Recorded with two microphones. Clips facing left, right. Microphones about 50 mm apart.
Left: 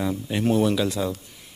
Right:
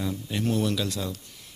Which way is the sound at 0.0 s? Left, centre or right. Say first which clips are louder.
Left 5 dB; centre.